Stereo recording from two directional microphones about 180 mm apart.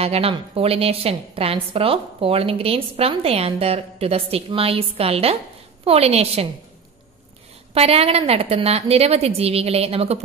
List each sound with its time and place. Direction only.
0.0 s a woman's voice: 35° right (ahead or behind)
7.7 s a woman's voice: 35° right (ahead or behind)